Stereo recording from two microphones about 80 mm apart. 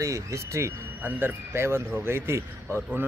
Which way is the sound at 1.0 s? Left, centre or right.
Right.